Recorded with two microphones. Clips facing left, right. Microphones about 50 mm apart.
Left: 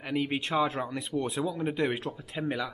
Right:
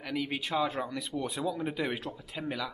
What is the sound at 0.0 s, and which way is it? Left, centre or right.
Speech, left.